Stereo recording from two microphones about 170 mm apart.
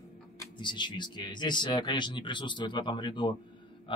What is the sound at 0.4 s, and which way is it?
Speech, 25° left (ahead or behind).